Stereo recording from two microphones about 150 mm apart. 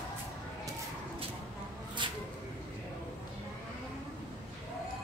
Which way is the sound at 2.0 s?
30° right (ahead or behind).